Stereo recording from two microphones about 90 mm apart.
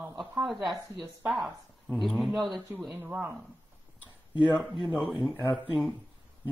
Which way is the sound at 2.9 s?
20° right (ahead or behind).